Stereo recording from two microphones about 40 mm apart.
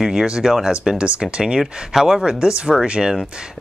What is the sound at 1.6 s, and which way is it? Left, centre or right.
Speech, centre.